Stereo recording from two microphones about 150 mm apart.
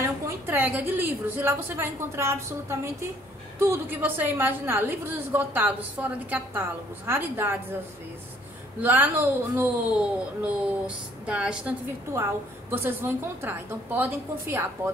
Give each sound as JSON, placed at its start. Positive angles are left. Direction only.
{"t": 0.0, "sound": "a woman's voice", "side_deg": -10}
{"t": 8.8, "sound": "a woman's voice", "side_deg": -10}
{"t": 12.7, "sound": "a woman's voice", "side_deg": -15}